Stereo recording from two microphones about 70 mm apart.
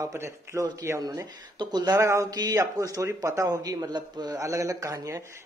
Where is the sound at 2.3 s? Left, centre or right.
Right.